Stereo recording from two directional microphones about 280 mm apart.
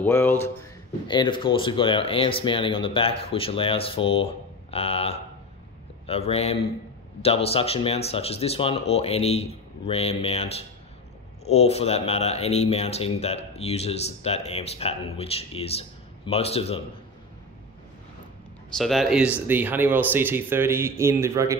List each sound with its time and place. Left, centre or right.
0.0 s speech: centre
18.8 s speech: centre